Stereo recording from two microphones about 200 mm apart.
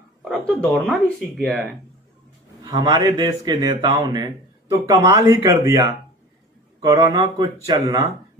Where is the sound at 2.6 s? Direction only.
20° right (ahead or behind).